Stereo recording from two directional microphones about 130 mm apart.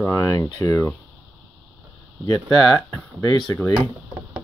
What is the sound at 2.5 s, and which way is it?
Speech, 30° left (ahead or behind).